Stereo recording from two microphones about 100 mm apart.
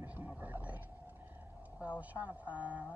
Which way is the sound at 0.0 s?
20° right (ahead or behind).